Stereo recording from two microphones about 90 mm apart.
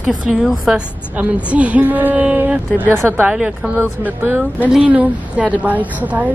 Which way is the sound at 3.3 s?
10° right (ahead or behind).